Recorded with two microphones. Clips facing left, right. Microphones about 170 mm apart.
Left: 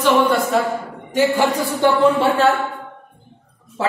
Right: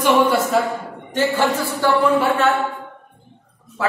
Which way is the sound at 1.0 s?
15° left (ahead or behind).